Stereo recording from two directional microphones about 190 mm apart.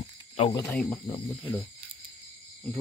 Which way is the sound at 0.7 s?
Centre (ahead or behind).